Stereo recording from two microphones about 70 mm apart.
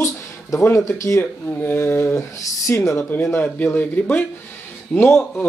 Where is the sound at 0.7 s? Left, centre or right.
Left.